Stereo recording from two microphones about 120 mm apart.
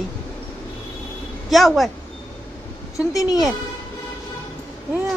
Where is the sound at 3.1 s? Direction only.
30° left (ahead or behind).